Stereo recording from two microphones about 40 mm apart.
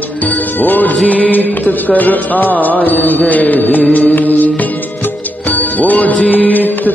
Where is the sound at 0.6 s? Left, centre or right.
Left.